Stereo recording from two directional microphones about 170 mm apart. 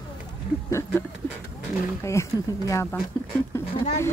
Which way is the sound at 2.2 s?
15° left (ahead or behind).